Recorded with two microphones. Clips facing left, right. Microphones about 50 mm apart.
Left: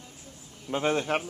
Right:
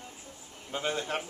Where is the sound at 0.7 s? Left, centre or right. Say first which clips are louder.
Left 6 dB; left.